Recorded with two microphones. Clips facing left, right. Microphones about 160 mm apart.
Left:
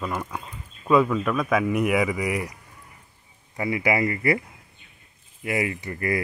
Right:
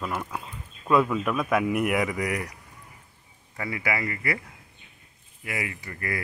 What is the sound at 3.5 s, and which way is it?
Speech, 20° left (ahead or behind).